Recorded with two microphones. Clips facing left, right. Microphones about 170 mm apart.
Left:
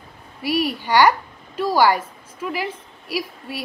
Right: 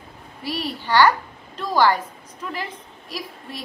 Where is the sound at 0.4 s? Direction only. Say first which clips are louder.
Left 6 dB; 10° left (ahead or behind).